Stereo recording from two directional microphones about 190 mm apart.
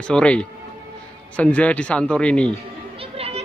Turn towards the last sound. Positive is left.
turn(degrees=-30)  # may be behind; listen again after turning